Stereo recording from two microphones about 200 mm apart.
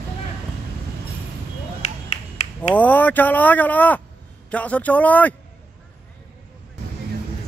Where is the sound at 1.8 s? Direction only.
35° left (ahead or behind).